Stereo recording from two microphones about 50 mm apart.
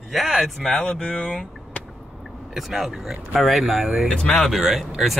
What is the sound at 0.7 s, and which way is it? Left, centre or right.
Speech, left.